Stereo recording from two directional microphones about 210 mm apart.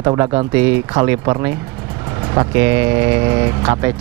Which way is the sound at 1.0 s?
15° right (ahead or behind).